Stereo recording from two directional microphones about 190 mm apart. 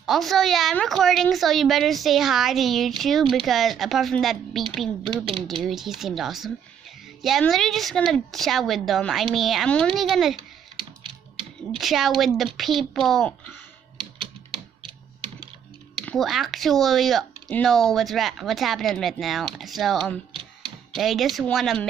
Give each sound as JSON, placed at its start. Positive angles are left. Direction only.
{"t": 0.0, "sound": "speech", "side_deg": 0}
{"t": 11.1, "sound": "typewriter", "side_deg": -30}
{"t": 11.8, "sound": "speech", "side_deg": 0}
{"t": 16.1, "sound": "speech", "side_deg": 0}